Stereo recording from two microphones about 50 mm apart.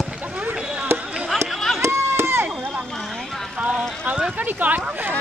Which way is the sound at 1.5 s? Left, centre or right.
Centre.